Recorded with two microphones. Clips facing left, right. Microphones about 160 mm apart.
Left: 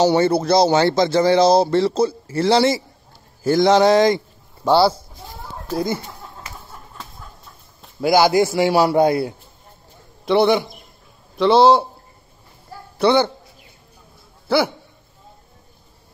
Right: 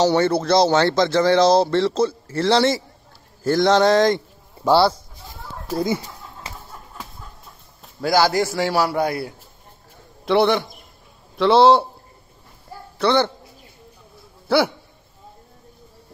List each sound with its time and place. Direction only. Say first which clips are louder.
0.0 s a man's voice: left 2 dB; 10° left (ahead or behind)
8.0 s speech: left 3 dB; 15° left (ahead or behind)
10.2 s a man's voice: left 2 dB; centre (ahead or behind)
13.0 s speech: left 3 dB; 10° left (ahead or behind)